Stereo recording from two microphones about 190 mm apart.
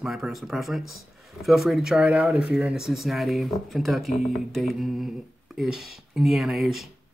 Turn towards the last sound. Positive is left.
turn(degrees=0)  # may be behind; listen again after turning